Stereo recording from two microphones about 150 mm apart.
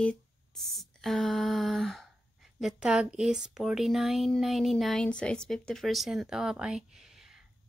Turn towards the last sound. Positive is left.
turn(degrees=0)  # may be behind; listen again after turning